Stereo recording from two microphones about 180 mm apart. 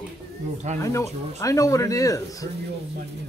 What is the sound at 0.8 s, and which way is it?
Speech, 15° left (ahead or behind).